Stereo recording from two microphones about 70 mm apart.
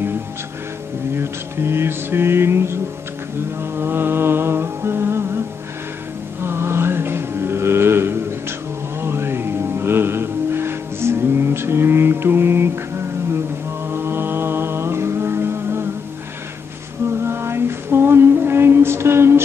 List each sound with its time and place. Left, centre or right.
1.1 s speech: right
3.7 s music: right
6.4 s mantra: right
9.0 s music: right
13.8 s mantra: right
17.2 s music: right